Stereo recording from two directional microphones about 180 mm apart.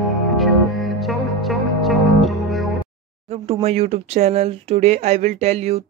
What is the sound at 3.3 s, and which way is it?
Speech, 35° right (ahead or behind).